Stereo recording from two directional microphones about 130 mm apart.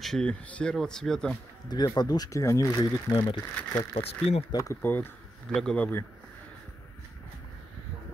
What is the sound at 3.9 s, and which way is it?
Speech, 50° left (ahead or behind).